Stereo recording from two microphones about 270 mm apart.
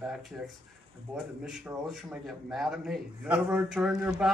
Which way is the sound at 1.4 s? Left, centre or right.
Centre.